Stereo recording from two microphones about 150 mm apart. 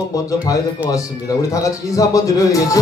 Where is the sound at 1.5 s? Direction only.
20° left (ahead or behind).